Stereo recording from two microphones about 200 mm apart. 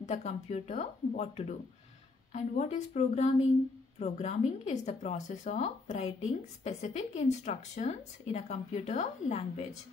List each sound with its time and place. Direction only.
0.0 s speech: 35° left (ahead or behind)